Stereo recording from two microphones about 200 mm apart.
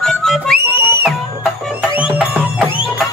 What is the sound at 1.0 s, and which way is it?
Music, 5° right (ahead or behind).